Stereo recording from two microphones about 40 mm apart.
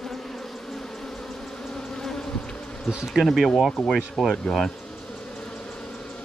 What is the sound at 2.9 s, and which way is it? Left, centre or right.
Speech, centre.